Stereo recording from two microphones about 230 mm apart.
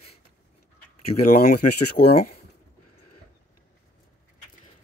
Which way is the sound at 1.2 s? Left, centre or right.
Left.